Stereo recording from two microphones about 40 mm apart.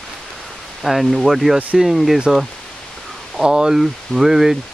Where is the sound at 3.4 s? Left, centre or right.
Centre.